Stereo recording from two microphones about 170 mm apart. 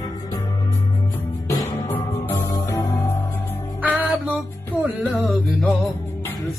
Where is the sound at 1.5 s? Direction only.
20° left (ahead or behind).